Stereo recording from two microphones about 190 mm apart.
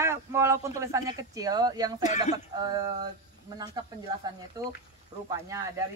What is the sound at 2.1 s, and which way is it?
Speech, 35° left (ahead or behind).